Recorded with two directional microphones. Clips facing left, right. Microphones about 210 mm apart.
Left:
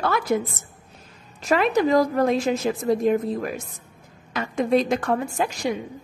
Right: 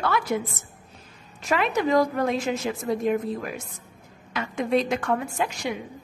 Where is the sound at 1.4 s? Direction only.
35° left (ahead or behind).